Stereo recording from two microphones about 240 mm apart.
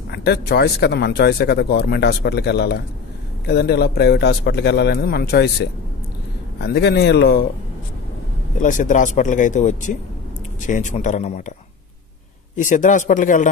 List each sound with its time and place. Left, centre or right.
0.1 s speech: left
6.6 s speech: left
8.5 s speech: left
12.5 s speech: left